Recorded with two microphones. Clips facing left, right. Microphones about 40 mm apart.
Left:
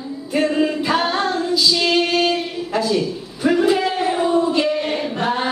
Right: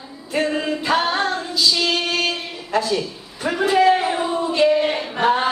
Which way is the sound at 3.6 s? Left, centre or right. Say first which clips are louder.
Right 6 dB; centre.